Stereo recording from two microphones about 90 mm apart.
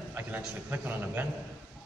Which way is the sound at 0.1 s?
20° right (ahead or behind).